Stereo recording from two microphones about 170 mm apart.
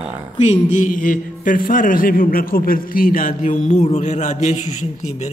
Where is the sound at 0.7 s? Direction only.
50° left (ahead or behind).